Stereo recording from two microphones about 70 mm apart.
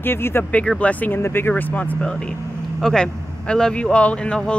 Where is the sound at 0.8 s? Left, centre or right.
Left.